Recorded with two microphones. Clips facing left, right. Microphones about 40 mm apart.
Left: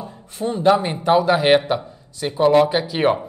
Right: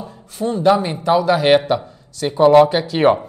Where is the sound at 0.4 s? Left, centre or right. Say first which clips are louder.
Right 1 dB; left.